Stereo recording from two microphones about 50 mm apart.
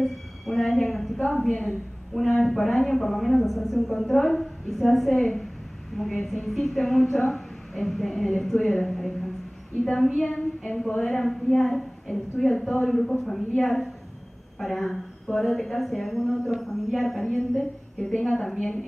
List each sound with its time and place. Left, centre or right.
0.0 s a sound: centre
2.1 s a woman's voice: centre
10.2 s a woman's voice: centre
11.0 s a woman's voice: centre